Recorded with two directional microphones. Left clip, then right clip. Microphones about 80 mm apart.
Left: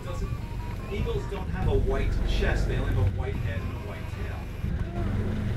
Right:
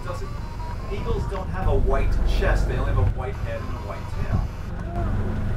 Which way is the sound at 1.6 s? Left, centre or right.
Right.